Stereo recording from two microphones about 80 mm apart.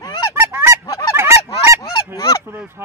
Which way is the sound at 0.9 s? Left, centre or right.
Left.